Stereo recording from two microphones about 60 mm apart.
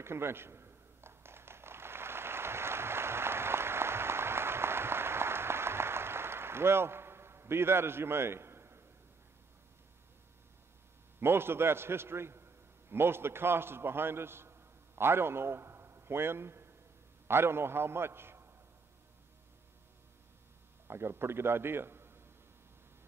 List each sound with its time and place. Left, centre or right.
0.0 s a sound: right
11.1 s a man's voice: right
20.8 s a man's voice: right